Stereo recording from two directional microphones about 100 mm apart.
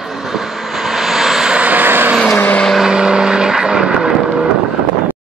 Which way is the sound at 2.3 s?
20° left (ahead or behind).